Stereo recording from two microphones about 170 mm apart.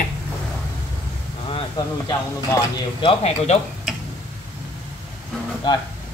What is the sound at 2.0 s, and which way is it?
Speech, 25° left (ahead or behind).